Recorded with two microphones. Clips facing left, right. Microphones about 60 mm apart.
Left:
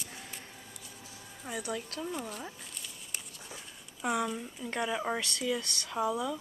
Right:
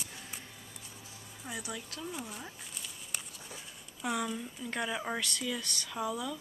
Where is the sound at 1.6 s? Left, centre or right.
Left.